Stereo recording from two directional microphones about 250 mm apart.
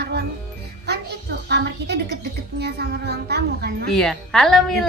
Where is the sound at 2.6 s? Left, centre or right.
Right.